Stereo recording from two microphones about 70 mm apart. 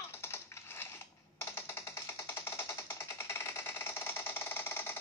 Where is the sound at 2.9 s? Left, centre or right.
Left.